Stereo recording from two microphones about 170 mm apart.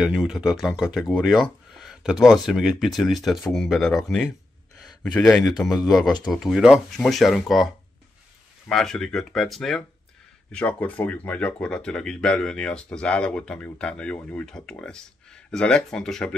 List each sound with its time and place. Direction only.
0.0 s speech: 5° right (ahead or behind)